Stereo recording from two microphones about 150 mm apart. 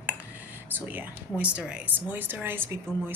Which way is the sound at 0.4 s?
10° right (ahead or behind).